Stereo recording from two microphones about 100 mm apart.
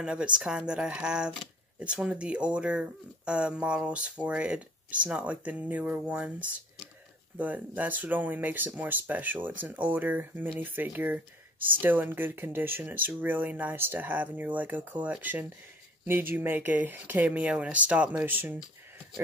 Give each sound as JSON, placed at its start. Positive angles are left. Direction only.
{"t": 0.0, "sound": "speech", "side_deg": -10}
{"t": 7.3, "sound": "speech", "side_deg": -15}